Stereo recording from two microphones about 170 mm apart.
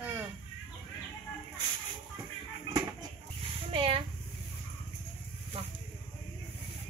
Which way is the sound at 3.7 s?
35° right (ahead or behind).